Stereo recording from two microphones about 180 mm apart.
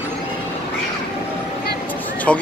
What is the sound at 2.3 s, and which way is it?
Speech, 5° left (ahead or behind).